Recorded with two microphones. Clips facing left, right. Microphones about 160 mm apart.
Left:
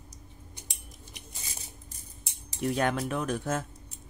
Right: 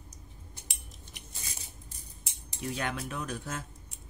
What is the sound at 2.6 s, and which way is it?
Speech, 55° left (ahead or behind).